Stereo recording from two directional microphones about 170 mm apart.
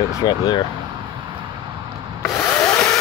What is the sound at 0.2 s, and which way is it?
Speech, 25° left (ahead or behind).